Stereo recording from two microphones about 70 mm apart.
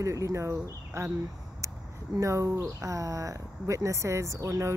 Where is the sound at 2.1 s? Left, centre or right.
Right.